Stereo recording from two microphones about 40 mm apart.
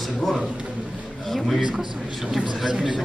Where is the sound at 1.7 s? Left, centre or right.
Centre.